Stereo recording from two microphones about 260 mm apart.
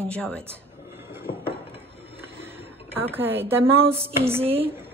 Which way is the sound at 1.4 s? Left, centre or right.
Centre.